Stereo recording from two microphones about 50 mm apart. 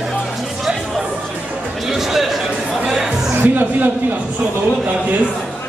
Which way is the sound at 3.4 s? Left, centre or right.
Right.